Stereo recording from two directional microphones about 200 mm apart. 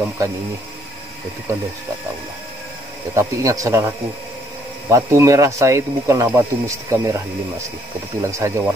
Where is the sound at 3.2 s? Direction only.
15° right (ahead or behind).